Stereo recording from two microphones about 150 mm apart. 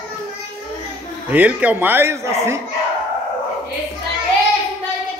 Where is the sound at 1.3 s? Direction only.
10° right (ahead or behind).